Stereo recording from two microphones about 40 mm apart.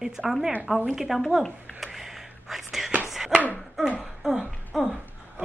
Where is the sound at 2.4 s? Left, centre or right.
Centre.